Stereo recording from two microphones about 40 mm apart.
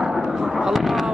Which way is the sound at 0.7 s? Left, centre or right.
Centre.